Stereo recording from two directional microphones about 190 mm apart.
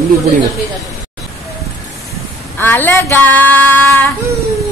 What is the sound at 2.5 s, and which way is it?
Female singing, 10° left (ahead or behind).